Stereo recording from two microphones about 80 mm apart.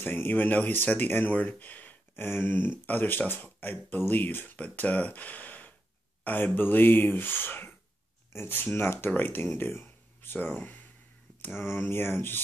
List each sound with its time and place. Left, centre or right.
0.0 s speech: left